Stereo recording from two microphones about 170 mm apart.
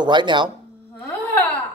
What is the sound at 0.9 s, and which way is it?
Wail, 10° left (ahead or behind).